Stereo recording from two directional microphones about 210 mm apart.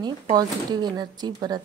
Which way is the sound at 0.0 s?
20° right (ahead or behind).